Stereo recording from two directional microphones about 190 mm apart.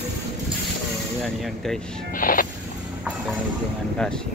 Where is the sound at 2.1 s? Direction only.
45° left (ahead or behind).